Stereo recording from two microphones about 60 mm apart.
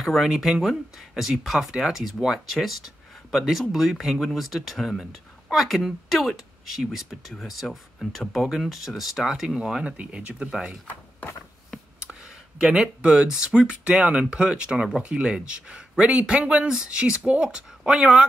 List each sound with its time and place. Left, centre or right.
0.0 s a woman's voice: centre
12.0 s a sound: centre
12.3 s speech: centre